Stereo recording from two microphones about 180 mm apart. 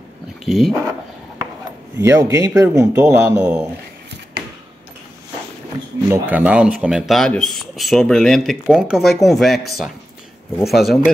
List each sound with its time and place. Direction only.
0.5 s speech: centre (ahead or behind)
2.0 s speech: 15° right (ahead or behind)
6.0 s speech: 10° right (ahead or behind)
10.7 s speech: centre (ahead or behind)